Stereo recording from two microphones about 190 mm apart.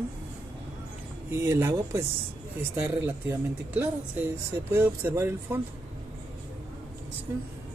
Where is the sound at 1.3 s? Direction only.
15° right (ahead or behind).